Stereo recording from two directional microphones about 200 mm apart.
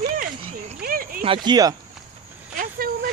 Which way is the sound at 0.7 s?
45° right (ahead or behind).